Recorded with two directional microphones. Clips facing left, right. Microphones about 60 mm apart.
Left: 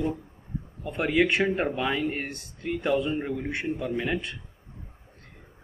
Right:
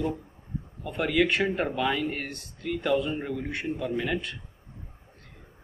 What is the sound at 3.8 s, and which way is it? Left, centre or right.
Speech, centre.